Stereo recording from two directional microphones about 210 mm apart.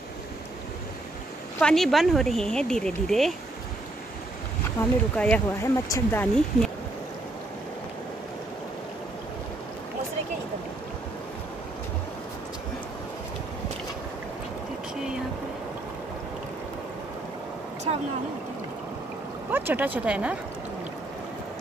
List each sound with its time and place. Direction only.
1.6 s speech: centre (ahead or behind)
4.7 s speech: 5° left (ahead or behind)
17.9 s a sound: 25° right (ahead or behind)
19.5 s speech: 10° right (ahead or behind)